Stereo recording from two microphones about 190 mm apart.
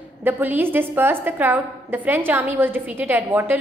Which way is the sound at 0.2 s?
10° right (ahead or behind).